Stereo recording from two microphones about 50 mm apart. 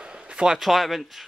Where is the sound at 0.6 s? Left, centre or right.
Centre.